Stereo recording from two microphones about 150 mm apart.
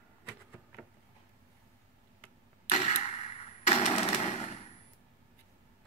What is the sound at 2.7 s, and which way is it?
Arrow, 45° left (ahead or behind).